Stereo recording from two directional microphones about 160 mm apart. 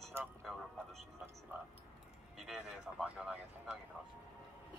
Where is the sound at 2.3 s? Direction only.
Centre (ahead or behind).